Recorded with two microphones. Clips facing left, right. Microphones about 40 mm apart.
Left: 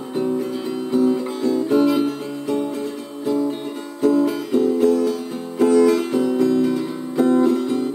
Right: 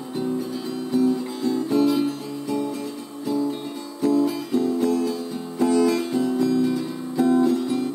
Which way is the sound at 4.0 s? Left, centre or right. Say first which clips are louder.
Left 3 dB; left.